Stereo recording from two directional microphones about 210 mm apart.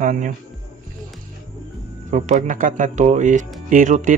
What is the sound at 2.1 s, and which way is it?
Speech, 35° right (ahead or behind).